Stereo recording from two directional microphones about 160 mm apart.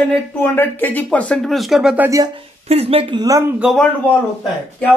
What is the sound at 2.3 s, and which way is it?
Speech, 40° right (ahead or behind).